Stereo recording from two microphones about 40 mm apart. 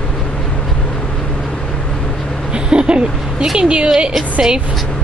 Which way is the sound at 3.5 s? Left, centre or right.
Right.